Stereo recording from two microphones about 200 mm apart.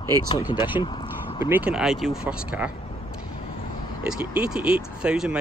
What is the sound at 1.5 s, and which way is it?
Speech, 5° right (ahead or behind).